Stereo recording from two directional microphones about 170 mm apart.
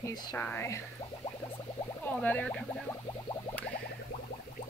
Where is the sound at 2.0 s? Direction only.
10° left (ahead or behind).